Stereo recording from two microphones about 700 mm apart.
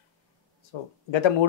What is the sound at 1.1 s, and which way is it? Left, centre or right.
Speech, left.